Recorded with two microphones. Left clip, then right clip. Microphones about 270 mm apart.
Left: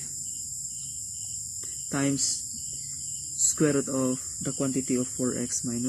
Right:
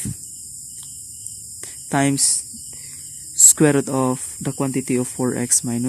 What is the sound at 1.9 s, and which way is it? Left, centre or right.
Speech, right.